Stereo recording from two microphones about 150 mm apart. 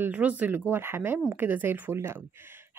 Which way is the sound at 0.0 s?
10° right (ahead or behind).